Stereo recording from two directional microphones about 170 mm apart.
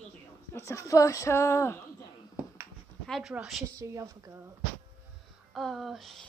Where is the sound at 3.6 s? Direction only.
20° right (ahead or behind).